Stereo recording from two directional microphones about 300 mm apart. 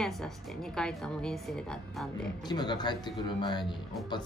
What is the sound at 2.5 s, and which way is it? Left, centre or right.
A man's voice, centre.